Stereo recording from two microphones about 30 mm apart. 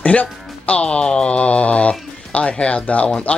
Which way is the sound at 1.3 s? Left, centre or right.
Left.